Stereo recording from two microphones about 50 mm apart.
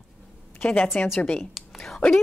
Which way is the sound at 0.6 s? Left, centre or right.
Left.